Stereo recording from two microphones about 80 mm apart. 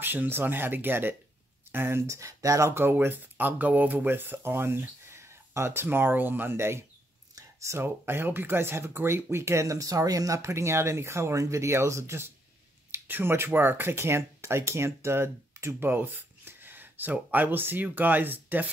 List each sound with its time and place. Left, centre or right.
0.0 s speech: right